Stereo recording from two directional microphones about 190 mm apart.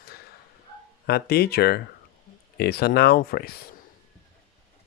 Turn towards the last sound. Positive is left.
turn(degrees=55)  # may be behind; listen again after turning